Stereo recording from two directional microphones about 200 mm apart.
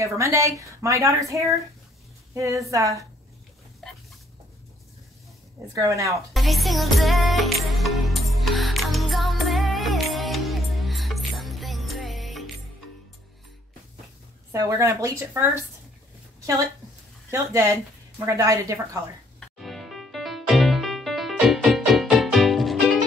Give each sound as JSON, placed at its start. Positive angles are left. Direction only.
{"t": 0.0, "sound": "speech", "side_deg": -15}
{"t": 3.8, "sound": "a sound", "side_deg": 0}
{"t": 5.8, "sound": "speech", "side_deg": -15}
{"t": 6.3, "sound": "music", "side_deg": 0}
{"t": 14.5, "sound": "speech", "side_deg": -15}
{"t": 17.3, "sound": "speech", "side_deg": -15}
{"t": 19.6, "sound": "music", "side_deg": 0}